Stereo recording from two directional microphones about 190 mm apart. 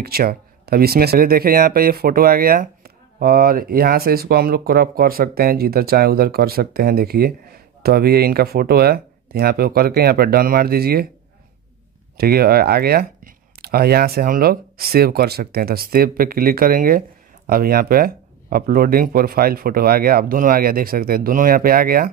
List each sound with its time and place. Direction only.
0.0 s speech: 55° right (ahead or behind)
12.2 s speech: 55° right (ahead or behind)